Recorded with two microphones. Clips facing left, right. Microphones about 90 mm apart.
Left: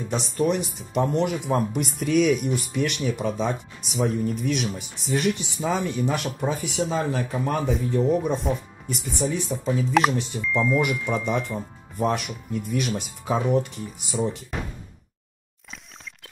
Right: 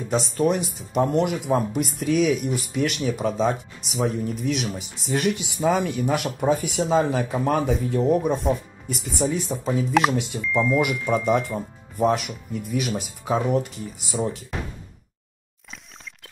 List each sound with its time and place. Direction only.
0.1 s speech: 5° right (ahead or behind)
6.5 s speech: 45° right (ahead or behind)
6.9 s speech: 15° right (ahead or behind)
8.0 s speech: centre (ahead or behind)
9.2 s speech: 25° right (ahead or behind)
10.4 s speech: centre (ahead or behind)